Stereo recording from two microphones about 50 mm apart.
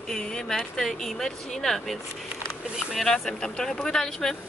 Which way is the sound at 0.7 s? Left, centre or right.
Centre.